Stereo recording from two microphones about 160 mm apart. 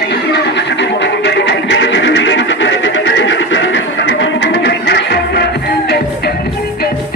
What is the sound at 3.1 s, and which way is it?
Music, 90° left.